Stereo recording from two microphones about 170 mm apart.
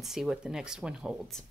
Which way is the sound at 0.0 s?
Centre (ahead or behind).